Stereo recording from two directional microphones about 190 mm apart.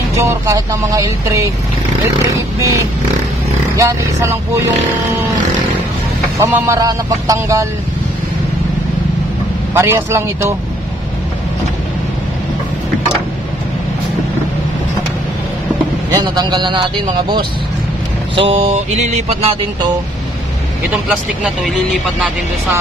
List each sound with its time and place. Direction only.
0.1 s speech: 15° right (ahead or behind)
2.6 s speech: 15° right (ahead or behind)
6.4 s speech: 15° right (ahead or behind)
9.8 s speech: 15° right (ahead or behind)
16.1 s a man's voice: 20° right (ahead or behind)
18.3 s mantra: 30° right (ahead or behind)